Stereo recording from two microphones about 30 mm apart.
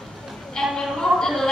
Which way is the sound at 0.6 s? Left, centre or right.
Centre.